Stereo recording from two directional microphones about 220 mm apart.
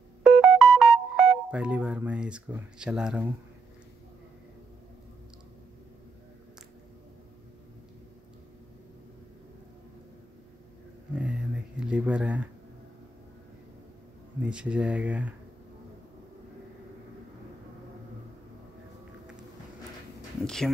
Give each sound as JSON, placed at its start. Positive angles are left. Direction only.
{"t": 0.2, "sound": "music", "side_deg": 0}
{"t": 1.5, "sound": "speech", "side_deg": -5}
{"t": 11.1, "sound": "a sound", "side_deg": -5}
{"t": 14.4, "sound": "speech", "side_deg": -5}
{"t": 20.4, "sound": "speech", "side_deg": 0}